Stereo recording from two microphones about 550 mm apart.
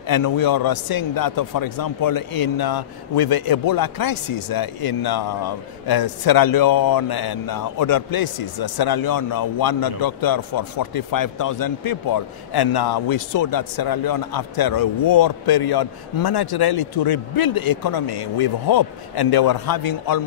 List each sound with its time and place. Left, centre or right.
0.1 s a man's voice: left